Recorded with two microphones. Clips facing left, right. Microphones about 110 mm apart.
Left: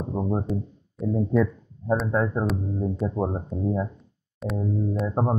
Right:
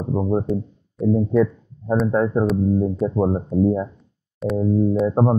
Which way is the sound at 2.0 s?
15° right (ahead or behind).